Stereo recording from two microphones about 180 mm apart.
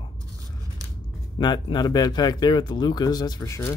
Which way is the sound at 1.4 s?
25° left (ahead or behind).